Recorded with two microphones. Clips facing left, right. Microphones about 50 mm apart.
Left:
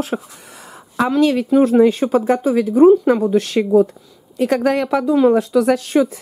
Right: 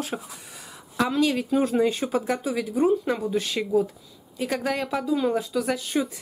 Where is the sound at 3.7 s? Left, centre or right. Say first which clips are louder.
Left 10 dB; left.